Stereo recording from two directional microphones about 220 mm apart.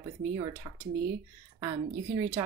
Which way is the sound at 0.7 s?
20° right (ahead or behind).